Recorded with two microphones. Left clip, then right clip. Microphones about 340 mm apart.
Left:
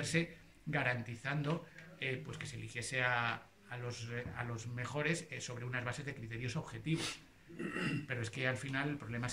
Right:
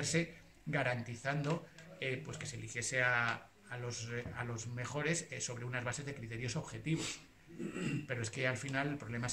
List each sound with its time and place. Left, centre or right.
0.0 s a man's voice: centre
8.1 s speech: centre